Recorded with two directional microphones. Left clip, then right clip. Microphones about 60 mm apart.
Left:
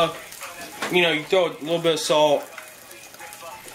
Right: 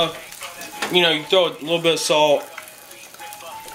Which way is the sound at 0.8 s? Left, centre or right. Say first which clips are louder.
Right 3 dB; centre.